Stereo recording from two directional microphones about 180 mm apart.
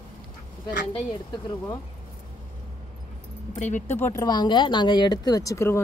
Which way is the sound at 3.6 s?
40° left (ahead or behind).